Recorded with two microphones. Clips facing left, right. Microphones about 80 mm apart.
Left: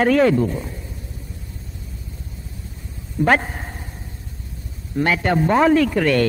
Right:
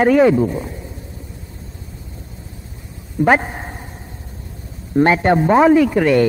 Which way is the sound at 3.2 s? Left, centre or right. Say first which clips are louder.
Right 3 dB; centre.